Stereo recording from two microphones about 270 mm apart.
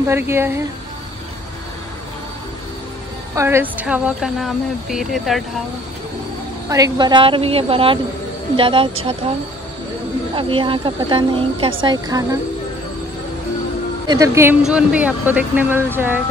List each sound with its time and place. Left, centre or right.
0.0 s speech: centre
3.3 s speech: centre
6.7 s speech: centre
10.3 s speech: centre
14.0 s speech: centre